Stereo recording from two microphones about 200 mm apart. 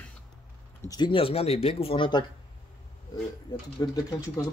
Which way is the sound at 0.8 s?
20° left (ahead or behind).